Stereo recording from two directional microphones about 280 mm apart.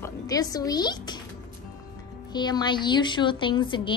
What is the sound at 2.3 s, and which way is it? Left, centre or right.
A woman's voice, centre.